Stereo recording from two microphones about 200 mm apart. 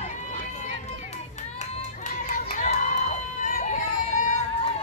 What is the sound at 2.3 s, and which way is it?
Crowd, 40° left (ahead or behind).